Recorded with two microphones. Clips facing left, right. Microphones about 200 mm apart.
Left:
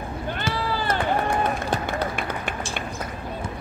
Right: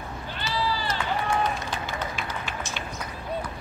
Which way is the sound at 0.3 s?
55° left (ahead or behind).